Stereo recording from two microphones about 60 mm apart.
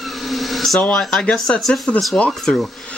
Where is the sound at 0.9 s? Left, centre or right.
Centre.